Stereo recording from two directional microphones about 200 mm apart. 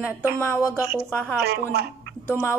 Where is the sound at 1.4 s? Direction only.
55° right (ahead or behind).